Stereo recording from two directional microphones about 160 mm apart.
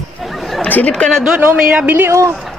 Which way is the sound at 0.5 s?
10° left (ahead or behind).